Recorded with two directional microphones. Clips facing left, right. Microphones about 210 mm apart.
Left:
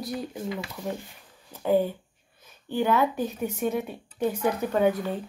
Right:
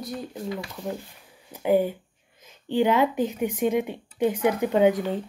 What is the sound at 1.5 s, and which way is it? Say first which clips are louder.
A woman's voice: right 2 dB; 10° right (ahead or behind).